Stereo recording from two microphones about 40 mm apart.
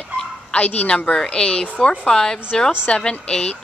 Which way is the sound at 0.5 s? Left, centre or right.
Left.